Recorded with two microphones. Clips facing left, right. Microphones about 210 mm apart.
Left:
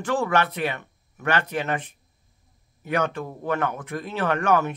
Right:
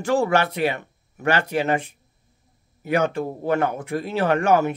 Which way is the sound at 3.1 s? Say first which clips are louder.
Right 5 dB; 35° right (ahead or behind).